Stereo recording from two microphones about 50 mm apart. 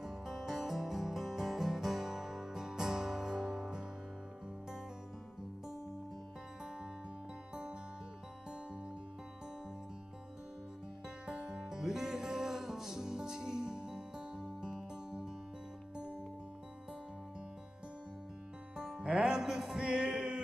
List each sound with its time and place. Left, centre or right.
0.0 s music: centre
11.2 s music: centre
18.8 s music: centre